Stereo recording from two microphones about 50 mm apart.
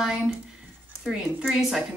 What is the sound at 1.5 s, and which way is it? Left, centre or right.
Speech, centre.